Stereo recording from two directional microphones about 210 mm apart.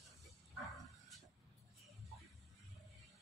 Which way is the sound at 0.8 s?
Centre (ahead or behind).